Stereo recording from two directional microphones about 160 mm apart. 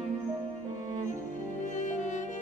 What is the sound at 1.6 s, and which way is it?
Music, 50° left (ahead or behind).